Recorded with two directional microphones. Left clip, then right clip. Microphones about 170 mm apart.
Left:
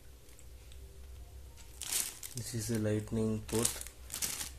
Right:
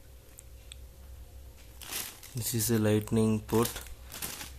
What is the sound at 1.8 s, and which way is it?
Crumpling, 10° right (ahead or behind).